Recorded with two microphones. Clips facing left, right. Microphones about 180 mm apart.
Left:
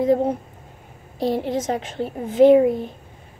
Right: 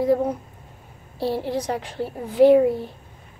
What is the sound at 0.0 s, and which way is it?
A child's voice, 25° left (ahead or behind).